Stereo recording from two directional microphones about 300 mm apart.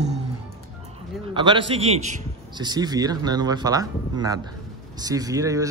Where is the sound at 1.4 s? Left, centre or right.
Centre.